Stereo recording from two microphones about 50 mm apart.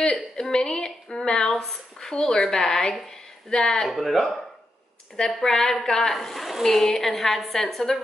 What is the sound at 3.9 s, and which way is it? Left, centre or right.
A woman's voice, centre.